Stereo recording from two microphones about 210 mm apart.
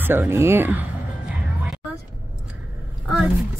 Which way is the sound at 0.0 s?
10° right (ahead or behind).